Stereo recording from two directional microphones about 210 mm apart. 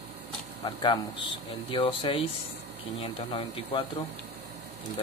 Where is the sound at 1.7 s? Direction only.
25° left (ahead or behind).